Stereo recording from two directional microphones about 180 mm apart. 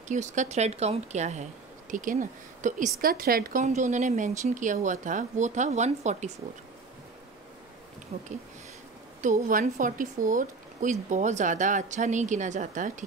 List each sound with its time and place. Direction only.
0.1 s speech: 40° right (ahead or behind)
3.6 s speech: 40° right (ahead or behind)
8.1 s speech: 40° right (ahead or behind)